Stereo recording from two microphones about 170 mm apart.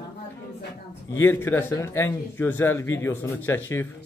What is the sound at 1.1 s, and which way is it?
A man's voice, 15° left (ahead or behind).